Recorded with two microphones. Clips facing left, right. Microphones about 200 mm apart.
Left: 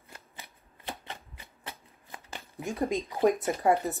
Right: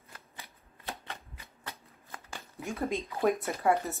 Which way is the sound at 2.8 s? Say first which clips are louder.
Left 4 dB; 15° left (ahead or behind).